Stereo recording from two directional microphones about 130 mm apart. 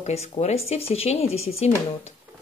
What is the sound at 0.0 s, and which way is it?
Speech, 55° left (ahead or behind).